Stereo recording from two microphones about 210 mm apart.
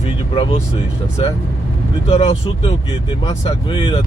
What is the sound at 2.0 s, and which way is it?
A man's voice, 30° left (ahead or behind).